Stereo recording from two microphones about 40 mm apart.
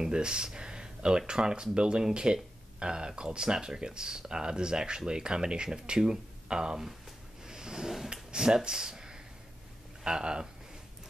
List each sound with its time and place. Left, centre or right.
0.0 s speech: right
7.4 s a sound: centre
8.1 s speech: centre